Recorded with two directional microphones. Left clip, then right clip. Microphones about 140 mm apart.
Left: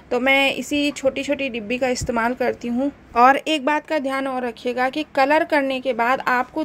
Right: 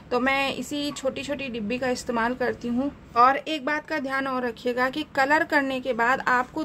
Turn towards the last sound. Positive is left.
turn(degrees=10)  # may be behind; listen again after turning